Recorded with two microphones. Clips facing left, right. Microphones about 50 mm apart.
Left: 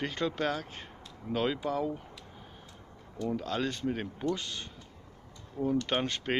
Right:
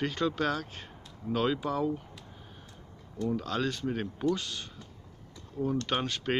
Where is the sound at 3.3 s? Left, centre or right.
Centre.